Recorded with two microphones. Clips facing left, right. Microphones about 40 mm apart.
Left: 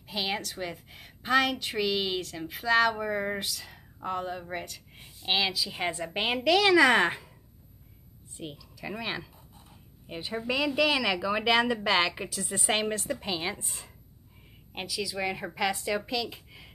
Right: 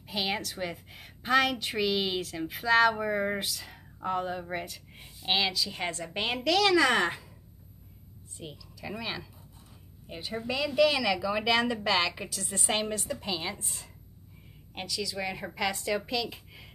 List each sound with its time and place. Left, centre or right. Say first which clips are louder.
0.1 s a woman's voice: even; centre
8.4 s a woman's voice: left 3 dB; centre